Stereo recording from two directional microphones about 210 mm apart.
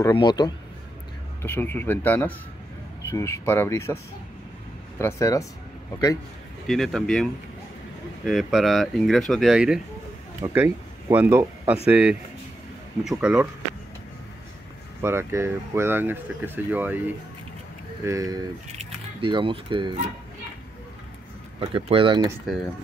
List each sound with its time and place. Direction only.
0.0 s a man's voice: 20° left (ahead or behind)
1.4 s speech: 10° left (ahead or behind)
6.7 s speech: centre (ahead or behind)
8.3 s speech: centre (ahead or behind)
15.0 s speech: 10° right (ahead or behind)
18.0 s speech: 15° right (ahead or behind)
18.8 s speech: 25° right (ahead or behind)
21.5 s speech: 25° right (ahead or behind)